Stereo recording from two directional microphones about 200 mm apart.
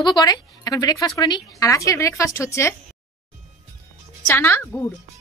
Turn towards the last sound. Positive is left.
turn(degrees=10)  # may be behind; listen again after turning